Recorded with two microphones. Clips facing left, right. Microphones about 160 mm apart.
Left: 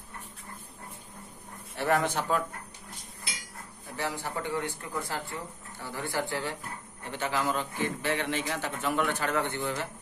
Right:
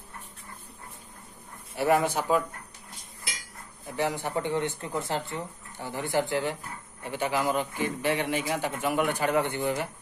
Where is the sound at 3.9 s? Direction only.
20° right (ahead or behind).